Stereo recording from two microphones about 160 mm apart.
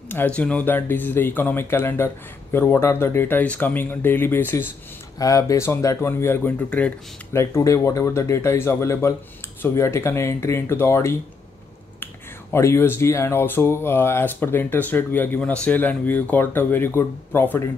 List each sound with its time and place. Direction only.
0.1 s speech: 10° left (ahead or behind)